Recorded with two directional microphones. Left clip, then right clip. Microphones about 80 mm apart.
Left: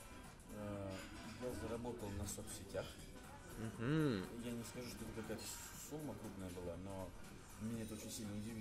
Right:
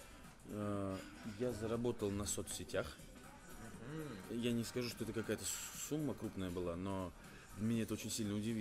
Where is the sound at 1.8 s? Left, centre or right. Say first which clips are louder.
Right 8 dB; right.